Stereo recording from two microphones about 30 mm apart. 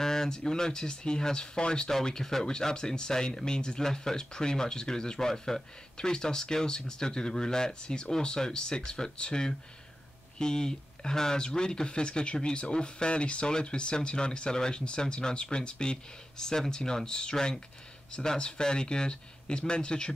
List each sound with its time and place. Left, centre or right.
0.0 s speech: centre
2.0 s speech: centre; by 20.1 s left